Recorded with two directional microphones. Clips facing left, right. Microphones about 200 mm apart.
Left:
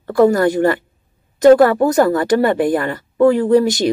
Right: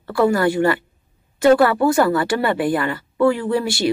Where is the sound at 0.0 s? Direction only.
40° left (ahead or behind).